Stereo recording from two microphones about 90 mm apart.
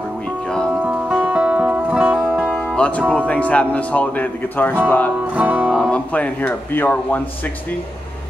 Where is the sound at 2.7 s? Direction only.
10° left (ahead or behind).